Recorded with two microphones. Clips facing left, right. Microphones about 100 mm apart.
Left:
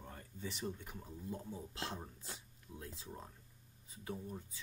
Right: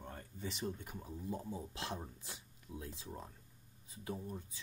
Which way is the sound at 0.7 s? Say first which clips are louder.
Right 3 dB; 20° right (ahead or behind).